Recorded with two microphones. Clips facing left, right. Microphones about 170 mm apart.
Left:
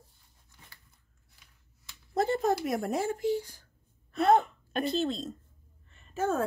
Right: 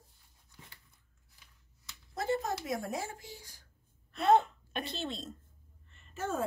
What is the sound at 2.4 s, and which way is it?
Speech, 55° left (ahead or behind).